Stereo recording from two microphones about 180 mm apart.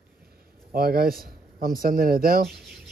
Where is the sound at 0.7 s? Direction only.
55° right (ahead or behind).